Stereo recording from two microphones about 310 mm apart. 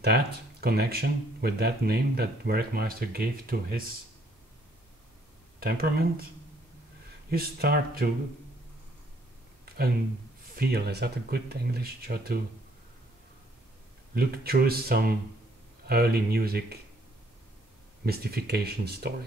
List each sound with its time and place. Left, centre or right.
0.0 s speech: right
5.6 s speech: right
7.2 s speech: right
10.4 s speech: right
14.1 s speech: right
18.0 s speech: right